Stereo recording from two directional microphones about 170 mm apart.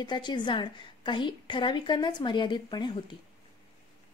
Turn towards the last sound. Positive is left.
turn(degrees=25)  # may be behind; listen again after turning